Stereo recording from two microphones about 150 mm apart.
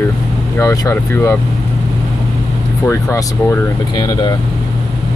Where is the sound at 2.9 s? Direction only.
20° left (ahead or behind).